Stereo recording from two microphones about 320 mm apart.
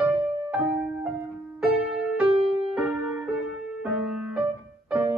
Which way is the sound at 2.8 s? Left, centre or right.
Centre.